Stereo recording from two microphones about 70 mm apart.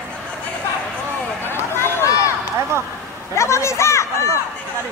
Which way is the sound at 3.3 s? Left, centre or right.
Left.